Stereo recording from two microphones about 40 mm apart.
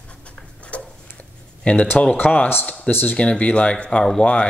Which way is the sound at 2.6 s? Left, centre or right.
Left.